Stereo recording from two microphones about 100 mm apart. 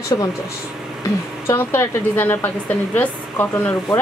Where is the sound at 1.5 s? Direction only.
25° left (ahead or behind).